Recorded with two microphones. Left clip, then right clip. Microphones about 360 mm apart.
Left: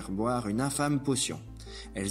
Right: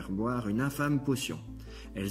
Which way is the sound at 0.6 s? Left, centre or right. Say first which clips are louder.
Left 1 dB; left.